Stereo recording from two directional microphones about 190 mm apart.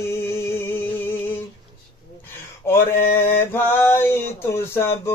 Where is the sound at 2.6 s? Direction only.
15° left (ahead or behind).